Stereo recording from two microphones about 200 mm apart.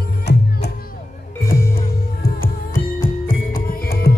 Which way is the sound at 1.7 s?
45° left (ahead or behind).